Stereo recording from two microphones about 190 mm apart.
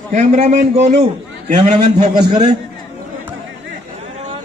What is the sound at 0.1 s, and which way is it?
Speech, 40° right (ahead or behind).